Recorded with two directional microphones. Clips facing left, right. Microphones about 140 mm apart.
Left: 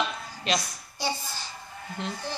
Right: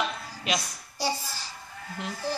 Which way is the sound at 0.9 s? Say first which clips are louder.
Right 1 dB; 35° right (ahead or behind).